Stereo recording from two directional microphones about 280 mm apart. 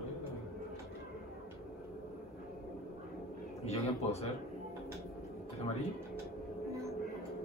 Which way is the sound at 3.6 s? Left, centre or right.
Left.